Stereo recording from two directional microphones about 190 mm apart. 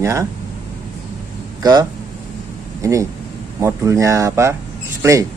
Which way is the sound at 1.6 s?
20° right (ahead or behind).